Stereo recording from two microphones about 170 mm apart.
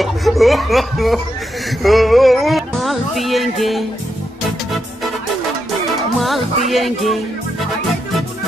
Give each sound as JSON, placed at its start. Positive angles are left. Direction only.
{"t": 0.0, "sound": "speech", "side_deg": 0}
{"t": 1.8, "sound": "music", "side_deg": 0}
{"t": 6.1, "sound": "speech", "side_deg": 0}